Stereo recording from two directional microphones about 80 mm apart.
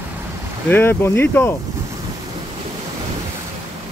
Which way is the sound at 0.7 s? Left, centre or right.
Left.